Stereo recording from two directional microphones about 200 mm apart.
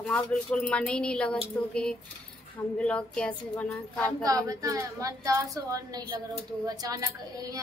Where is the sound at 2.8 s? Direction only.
5° left (ahead or behind).